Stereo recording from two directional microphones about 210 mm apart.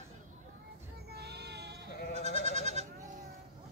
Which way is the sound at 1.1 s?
50° right (ahead or behind).